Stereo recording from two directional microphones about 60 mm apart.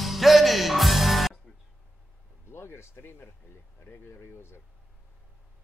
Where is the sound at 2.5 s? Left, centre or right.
Left.